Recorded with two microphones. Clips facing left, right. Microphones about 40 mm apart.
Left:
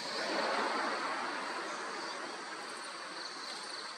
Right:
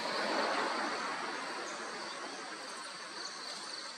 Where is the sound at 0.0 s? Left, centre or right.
Centre.